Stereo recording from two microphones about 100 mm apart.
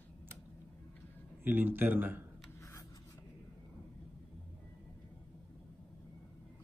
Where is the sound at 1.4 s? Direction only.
20° right (ahead or behind).